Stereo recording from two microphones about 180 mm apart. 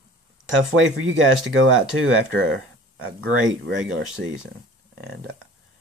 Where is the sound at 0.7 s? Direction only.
90° right.